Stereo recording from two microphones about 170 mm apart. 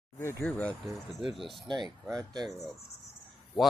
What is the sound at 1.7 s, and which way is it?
Speech, 25° right (ahead or behind).